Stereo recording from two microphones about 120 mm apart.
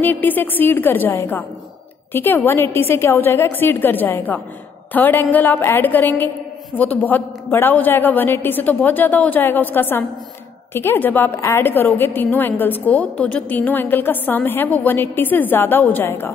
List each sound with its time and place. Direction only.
0.0 s a woman's voice: 15° left (ahead or behind)